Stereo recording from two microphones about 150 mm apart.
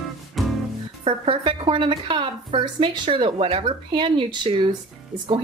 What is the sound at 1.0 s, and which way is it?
A woman's voice, 35° right (ahead or behind).